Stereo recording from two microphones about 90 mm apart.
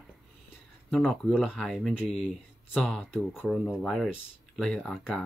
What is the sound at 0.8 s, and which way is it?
Speech, 5° left (ahead or behind).